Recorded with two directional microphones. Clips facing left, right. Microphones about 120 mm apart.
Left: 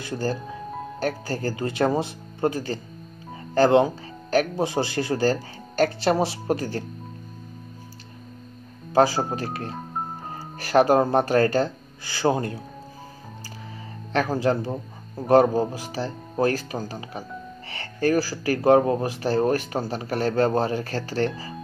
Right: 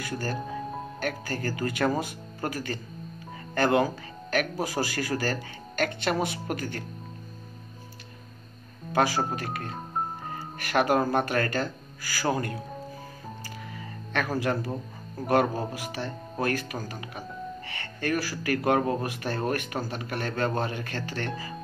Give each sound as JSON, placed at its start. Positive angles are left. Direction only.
{"t": 0.0, "sound": "speech", "side_deg": 30}
{"t": 8.9, "sound": "speech", "side_deg": 30}
{"t": 14.1, "sound": "speech", "side_deg": 30}